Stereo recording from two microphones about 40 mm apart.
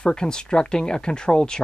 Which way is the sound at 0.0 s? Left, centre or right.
Centre.